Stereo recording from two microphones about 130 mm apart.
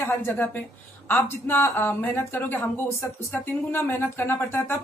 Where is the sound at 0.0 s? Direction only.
15° left (ahead or behind).